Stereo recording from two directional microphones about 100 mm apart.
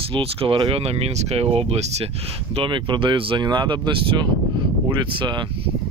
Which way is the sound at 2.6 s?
50° right (ahead or behind).